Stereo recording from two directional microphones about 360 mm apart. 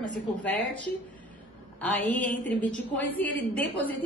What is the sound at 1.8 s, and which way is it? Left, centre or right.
A woman's voice, centre.